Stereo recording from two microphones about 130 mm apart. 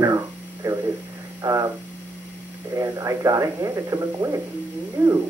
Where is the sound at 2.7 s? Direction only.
25° right (ahead or behind).